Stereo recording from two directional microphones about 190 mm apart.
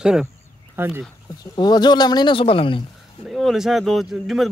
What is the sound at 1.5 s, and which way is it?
Speech, 20° left (ahead or behind).